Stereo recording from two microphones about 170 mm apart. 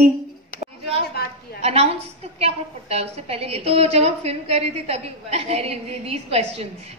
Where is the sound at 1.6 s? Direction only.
35° right (ahead or behind).